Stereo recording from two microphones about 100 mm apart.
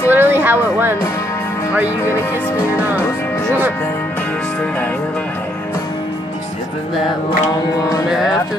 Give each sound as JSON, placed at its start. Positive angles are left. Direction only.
{"t": 0.1, "sound": "speech", "side_deg": -20}
{"t": 8.1, "sound": "music", "side_deg": -5}